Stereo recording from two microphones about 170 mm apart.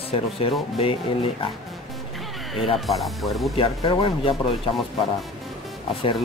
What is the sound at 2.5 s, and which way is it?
Speech, centre (ahead or behind).